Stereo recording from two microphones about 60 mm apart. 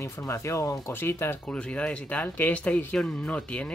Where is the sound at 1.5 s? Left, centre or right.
Centre.